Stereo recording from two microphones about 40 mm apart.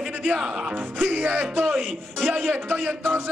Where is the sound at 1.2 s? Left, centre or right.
Right.